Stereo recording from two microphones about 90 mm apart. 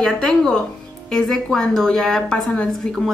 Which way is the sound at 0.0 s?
5° left (ahead or behind).